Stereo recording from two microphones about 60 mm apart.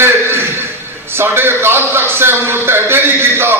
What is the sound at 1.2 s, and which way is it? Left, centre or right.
A man's voice, right.